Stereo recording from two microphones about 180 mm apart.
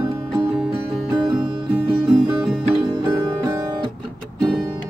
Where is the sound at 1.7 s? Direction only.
5° right (ahead or behind).